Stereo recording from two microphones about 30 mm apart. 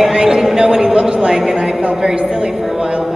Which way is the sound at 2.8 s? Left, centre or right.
Right.